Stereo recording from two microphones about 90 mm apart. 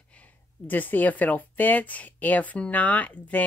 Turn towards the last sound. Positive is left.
turn(degrees=15)  # may be behind; listen again after turning